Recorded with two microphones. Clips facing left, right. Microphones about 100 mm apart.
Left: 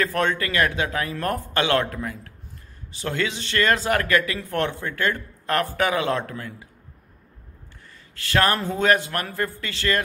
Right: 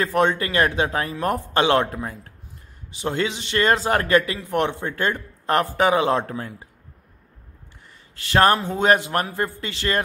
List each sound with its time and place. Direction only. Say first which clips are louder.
0.0 s speech: right 3 dB; 25° right (ahead or behind)
8.1 s speech: right 4 dB; 25° right (ahead or behind)